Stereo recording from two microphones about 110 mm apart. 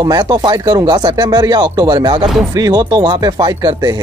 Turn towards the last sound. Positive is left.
turn(degrees=-40)  # may be behind; listen again after turning